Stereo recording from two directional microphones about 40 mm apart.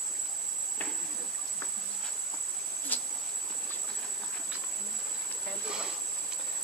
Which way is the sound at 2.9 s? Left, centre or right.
Left.